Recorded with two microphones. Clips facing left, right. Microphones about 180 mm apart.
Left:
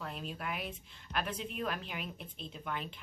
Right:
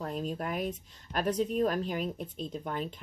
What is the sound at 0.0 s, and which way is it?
A woman's voice, 40° right (ahead or behind).